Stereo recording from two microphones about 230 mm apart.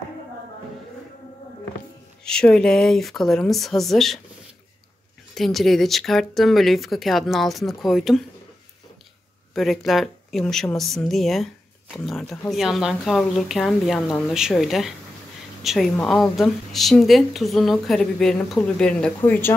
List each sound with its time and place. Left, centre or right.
2.2 s a woman's voice: centre
5.3 s a woman's voice: centre
9.5 s a woman's voice: centre